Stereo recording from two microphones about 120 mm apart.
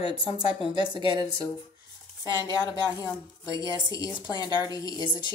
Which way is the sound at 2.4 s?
30° left (ahead or behind).